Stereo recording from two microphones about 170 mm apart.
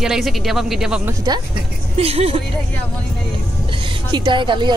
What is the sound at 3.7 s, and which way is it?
A woman's voice, 30° right (ahead or behind).